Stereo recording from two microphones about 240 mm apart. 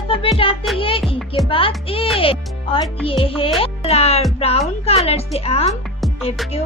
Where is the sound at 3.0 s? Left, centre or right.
Left.